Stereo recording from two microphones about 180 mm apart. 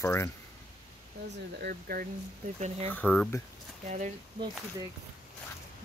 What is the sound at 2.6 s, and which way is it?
Speech, 40° right (ahead or behind).